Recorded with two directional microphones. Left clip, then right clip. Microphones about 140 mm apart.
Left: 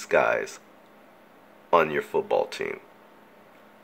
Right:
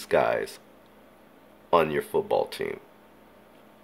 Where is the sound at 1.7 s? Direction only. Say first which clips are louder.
Left 1 dB; 15° right (ahead or behind).